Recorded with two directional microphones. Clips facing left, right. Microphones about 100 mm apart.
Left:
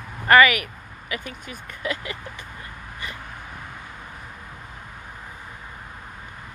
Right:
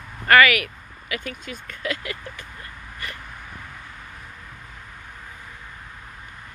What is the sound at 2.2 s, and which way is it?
Vehicle, 20° left (ahead or behind).